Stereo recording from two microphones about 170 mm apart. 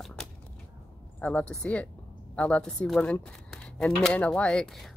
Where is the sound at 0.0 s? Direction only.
Centre (ahead or behind).